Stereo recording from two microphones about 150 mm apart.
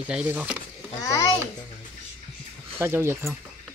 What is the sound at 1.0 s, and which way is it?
Speech, 25° left (ahead or behind).